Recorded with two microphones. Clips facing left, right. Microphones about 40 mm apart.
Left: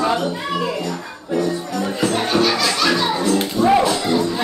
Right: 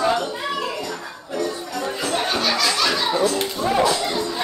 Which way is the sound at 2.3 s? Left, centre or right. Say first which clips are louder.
Left 3 dB; centre.